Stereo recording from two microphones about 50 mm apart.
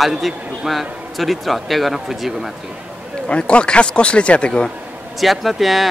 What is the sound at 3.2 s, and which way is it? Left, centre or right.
Speech, left.